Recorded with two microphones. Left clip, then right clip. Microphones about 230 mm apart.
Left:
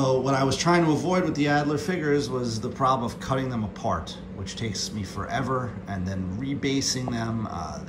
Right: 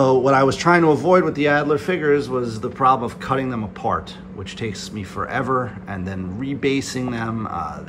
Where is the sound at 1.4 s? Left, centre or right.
Centre.